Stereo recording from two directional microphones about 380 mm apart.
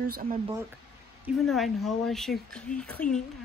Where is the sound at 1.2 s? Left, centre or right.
Centre.